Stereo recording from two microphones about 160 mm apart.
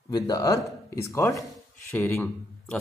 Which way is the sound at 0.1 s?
20° left (ahead or behind).